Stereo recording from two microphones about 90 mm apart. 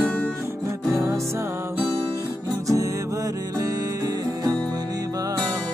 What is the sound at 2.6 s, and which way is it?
Music, 40° right (ahead or behind).